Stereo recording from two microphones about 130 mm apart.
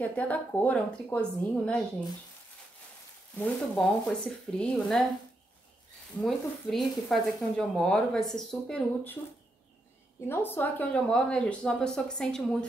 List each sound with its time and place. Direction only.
0.0 s speech: 10° left (ahead or behind)
3.3 s speech: 5° left (ahead or behind)
6.2 s speech: centre (ahead or behind)
10.2 s speech: 20° left (ahead or behind)